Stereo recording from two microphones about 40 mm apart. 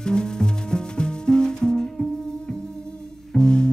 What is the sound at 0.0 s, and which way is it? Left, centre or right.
Music, left.